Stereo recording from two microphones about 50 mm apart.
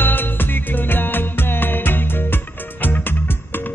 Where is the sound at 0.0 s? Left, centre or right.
Left.